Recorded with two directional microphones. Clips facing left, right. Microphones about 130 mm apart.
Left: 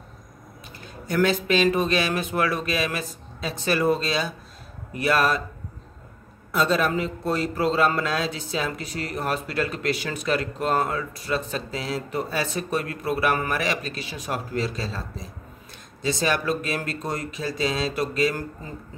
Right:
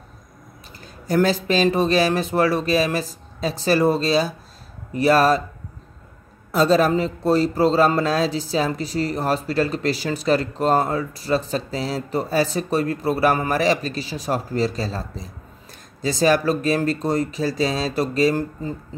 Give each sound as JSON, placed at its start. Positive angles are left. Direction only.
{"t": 1.0, "sound": "speech", "side_deg": -35}
{"t": 6.5, "sound": "speech", "side_deg": -35}